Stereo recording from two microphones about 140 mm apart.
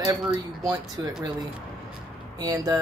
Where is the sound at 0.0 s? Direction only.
30° right (ahead or behind).